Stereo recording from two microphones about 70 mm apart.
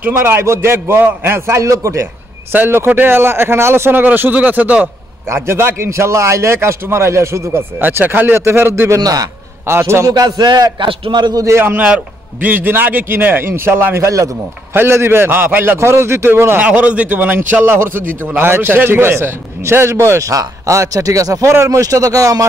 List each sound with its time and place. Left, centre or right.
0.1 s a man's voice: right
2.5 s a man's voice: right
5.3 s a man's voice: right
7.8 s a man's voice: right
9.0 s music: right
9.7 s a man's voice: right
10.0 s music: right
11.1 s a man's voice: right
11.4 s a man's voice: right
14.0 s a man's voice: right
14.7 s a man's voice: right
16.6 s a man's voice: centre; by 22.5 s right